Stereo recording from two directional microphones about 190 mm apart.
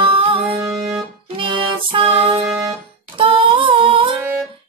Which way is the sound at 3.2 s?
25° right (ahead or behind).